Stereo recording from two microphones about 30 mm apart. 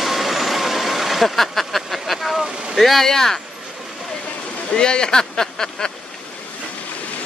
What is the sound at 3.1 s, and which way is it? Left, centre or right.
Speech, centre.